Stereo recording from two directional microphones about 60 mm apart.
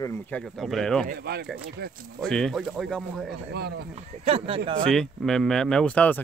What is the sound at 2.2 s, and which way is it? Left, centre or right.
Speech, centre.